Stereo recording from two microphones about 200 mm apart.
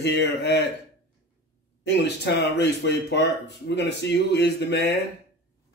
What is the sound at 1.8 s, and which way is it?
A man's voice, 60° left (ahead or behind).